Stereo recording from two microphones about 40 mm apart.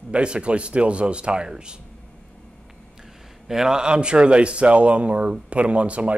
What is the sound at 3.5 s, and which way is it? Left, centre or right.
A man's voice, centre.